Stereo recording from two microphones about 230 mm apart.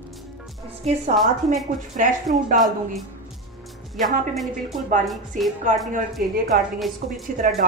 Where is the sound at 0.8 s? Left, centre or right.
Right.